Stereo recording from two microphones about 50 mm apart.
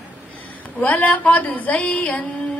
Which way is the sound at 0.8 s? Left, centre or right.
Left.